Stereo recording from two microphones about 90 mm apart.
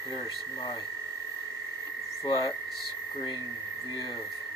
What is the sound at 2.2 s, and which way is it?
Speech, 45° left (ahead or behind).